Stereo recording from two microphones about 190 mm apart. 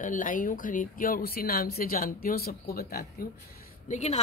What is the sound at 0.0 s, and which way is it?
A woman's voice, 45° left (ahead or behind).